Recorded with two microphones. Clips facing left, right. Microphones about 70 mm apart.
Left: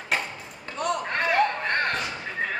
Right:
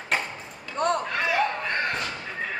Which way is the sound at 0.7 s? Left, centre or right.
Right.